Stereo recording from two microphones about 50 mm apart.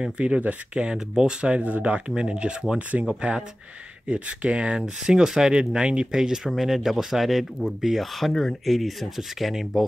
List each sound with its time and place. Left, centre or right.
0.2 s speech: right
0.8 s speech: centre
8.3 s speech: centre
8.6 s speech: centre